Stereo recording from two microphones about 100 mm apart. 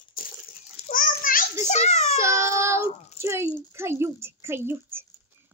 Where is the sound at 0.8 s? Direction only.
90° left.